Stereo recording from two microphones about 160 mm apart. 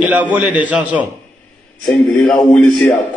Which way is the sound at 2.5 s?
15° left (ahead or behind).